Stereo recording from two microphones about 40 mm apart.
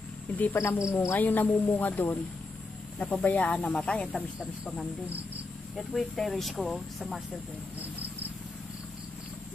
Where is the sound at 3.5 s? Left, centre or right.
Left.